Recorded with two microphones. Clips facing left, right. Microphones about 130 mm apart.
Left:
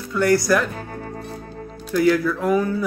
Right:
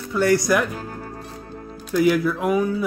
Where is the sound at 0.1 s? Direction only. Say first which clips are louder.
Left 1 dB; 25° right (ahead or behind).